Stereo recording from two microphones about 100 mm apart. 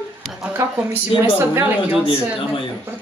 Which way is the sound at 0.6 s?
30° right (ahead or behind).